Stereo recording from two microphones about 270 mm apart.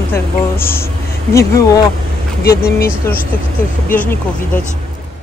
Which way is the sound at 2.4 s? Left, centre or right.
Left.